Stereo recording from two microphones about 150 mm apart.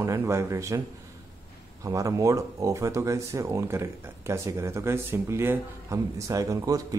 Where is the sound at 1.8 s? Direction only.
20° right (ahead or behind).